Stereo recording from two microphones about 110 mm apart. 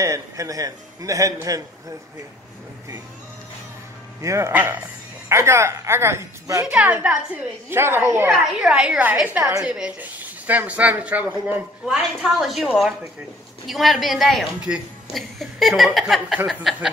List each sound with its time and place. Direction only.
0.0 s a man's voice: 30° right (ahead or behind)
4.2 s a man's voice: 25° right (ahead or behind)
6.6 s a man's voice: 10° right (ahead or behind)
8.3 s speech: 10° right (ahead or behind)
11.8 s a woman's voice: 5° right (ahead or behind)